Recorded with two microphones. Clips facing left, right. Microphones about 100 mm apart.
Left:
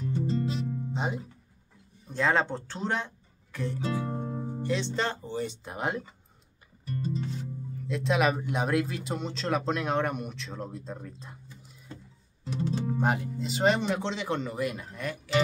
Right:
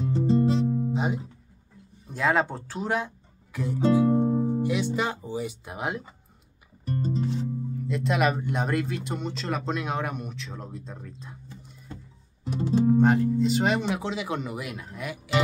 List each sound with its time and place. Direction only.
0.0 s music: 25° right (ahead or behind)
0.9 s guitar: centre (ahead or behind)
2.0 s speech: 5° right (ahead or behind)
4.2 s speech: 20° right (ahead or behind); by 6.0 s 5° right (ahead or behind)
7.0 s music: 35° right (ahead or behind)
7.9 s speech: centre (ahead or behind)
12.5 s music: 15° right (ahead or behind)
13.0 s speech: 5° left (ahead or behind)